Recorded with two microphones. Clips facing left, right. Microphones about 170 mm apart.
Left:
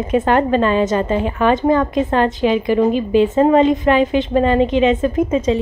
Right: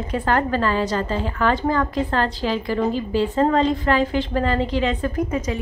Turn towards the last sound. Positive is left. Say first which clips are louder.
# left 7 dB
turn(degrees=25)  # may be behind; listen again after turning